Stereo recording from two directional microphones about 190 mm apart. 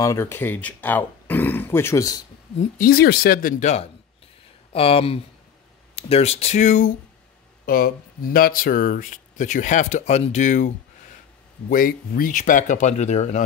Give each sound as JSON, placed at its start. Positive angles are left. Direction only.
{"t": 0.0, "sound": "speech", "side_deg": 15}
{"t": 2.8, "sound": "speech", "side_deg": 55}
{"t": 11.7, "sound": "speech", "side_deg": 45}